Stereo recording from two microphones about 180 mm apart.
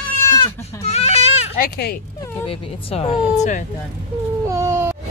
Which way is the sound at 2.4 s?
30° left (ahead or behind).